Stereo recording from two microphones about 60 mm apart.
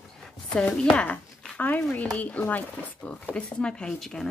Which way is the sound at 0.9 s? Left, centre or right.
Left.